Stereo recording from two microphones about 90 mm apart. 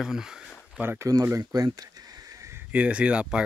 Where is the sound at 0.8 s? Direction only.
35° right (ahead or behind).